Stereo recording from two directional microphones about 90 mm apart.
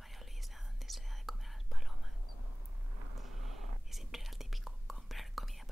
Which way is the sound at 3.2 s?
Centre (ahead or behind).